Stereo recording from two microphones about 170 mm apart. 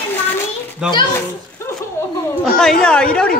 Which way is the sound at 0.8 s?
5° right (ahead or behind).